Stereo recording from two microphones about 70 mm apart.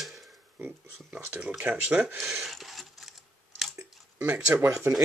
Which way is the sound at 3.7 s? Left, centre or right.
Right.